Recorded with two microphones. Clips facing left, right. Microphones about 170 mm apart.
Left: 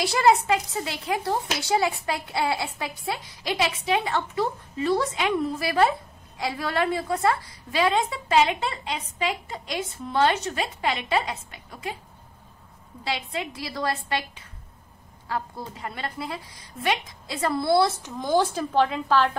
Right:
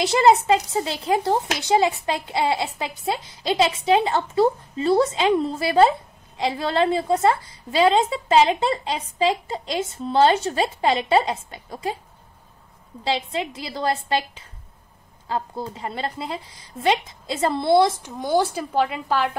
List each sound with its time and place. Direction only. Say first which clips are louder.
0.0 s speech: right 4 dB; 25° right (ahead or behind)
13.0 s speech: right 5 dB; 25° right (ahead or behind)